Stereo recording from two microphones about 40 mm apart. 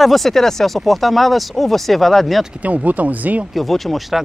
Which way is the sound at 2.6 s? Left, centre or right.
Right.